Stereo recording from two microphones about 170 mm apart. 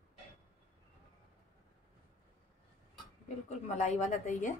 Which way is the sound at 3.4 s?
40° left (ahead or behind).